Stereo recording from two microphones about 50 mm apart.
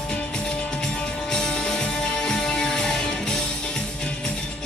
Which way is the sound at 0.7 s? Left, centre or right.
Centre.